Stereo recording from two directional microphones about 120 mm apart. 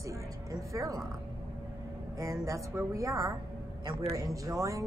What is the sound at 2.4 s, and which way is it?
A woman's voice, 25° right (ahead or behind).